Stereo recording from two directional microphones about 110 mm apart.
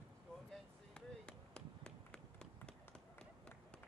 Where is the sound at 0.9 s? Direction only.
10° left (ahead or behind).